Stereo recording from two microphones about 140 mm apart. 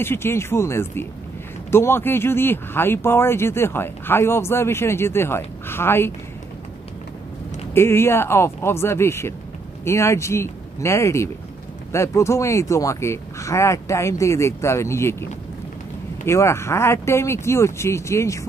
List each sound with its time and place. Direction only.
0.0 s speech: 15° left (ahead or behind)
7.7 s speech: 15° left (ahead or behind)
16.3 s speech: 20° left (ahead or behind)